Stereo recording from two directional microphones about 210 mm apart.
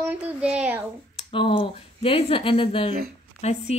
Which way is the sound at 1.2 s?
25° left (ahead or behind).